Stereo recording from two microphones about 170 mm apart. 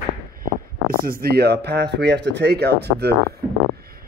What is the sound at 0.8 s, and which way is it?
Speech, 60° right (ahead or behind).